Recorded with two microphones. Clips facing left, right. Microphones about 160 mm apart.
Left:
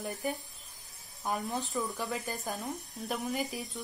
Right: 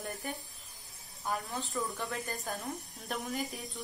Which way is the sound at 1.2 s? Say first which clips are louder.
Left 3 dB; 20° left (ahead or behind).